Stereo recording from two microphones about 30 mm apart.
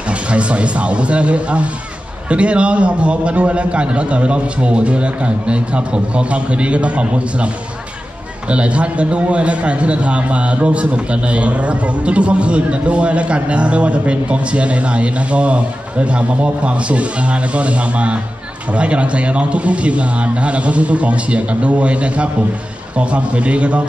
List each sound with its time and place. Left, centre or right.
0.1 s a man's voice: right